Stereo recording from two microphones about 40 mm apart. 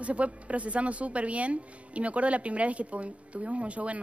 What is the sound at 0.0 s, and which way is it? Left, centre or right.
Speech, right.